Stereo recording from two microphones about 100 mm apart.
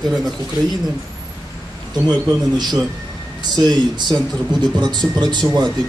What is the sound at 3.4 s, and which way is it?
Speech, 45° right (ahead or behind).